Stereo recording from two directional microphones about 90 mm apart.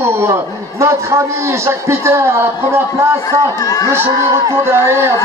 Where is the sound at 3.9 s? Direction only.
30° right (ahead or behind).